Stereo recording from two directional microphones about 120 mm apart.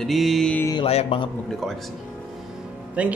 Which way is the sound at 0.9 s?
55° left (ahead or behind).